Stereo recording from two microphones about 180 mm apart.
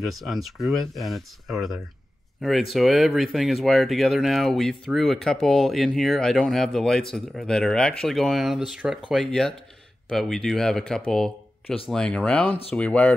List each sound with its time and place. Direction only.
0.0 s speech: centre (ahead or behind)